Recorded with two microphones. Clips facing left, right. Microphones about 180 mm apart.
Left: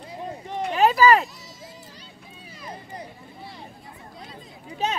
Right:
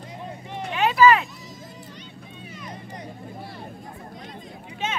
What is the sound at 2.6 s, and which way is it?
Music, 30° left (ahead or behind).